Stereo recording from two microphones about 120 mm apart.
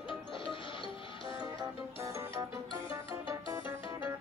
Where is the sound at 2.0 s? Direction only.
25° right (ahead or behind).